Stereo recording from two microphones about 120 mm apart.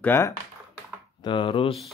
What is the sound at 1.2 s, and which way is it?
Speech, 40° left (ahead or behind).